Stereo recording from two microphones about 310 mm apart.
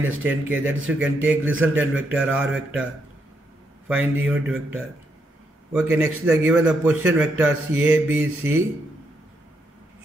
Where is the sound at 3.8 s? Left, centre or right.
Centre.